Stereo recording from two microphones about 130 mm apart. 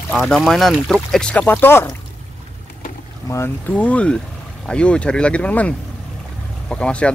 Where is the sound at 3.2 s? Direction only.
20° left (ahead or behind).